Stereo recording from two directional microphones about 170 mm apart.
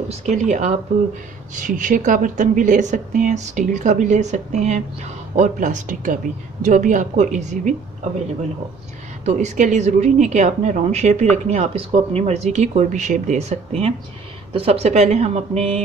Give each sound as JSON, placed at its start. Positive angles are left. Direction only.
{"t": 0.1, "sound": "a woman's voice", "side_deg": -45}
{"t": 9.2, "sound": "a woman's voice", "side_deg": -45}